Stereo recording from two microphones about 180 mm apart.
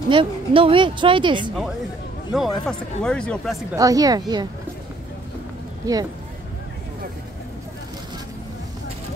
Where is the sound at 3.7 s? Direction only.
20° right (ahead or behind).